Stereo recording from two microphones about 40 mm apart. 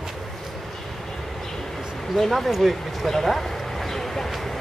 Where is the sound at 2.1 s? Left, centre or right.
Centre.